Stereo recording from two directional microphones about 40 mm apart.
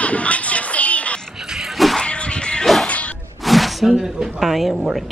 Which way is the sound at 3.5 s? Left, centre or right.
Centre.